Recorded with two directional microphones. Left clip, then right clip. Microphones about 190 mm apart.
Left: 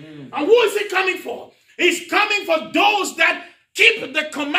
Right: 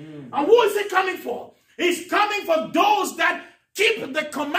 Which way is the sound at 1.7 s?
5° right (ahead or behind).